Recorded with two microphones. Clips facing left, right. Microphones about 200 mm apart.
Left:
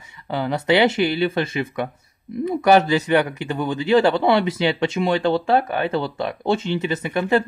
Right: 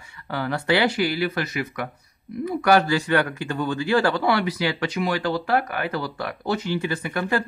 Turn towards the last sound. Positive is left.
turn(degrees=25)  # may be behind; listen again after turning